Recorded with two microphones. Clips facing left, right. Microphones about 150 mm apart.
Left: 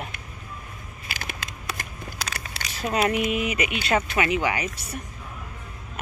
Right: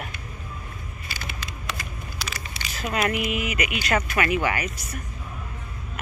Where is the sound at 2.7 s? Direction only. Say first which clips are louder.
Left 2 dB; 30° left (ahead or behind).